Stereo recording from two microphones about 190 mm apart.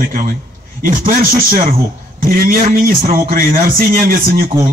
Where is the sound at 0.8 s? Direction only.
45° right (ahead or behind).